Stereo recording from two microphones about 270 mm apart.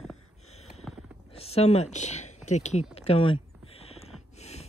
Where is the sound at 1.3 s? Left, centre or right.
Left.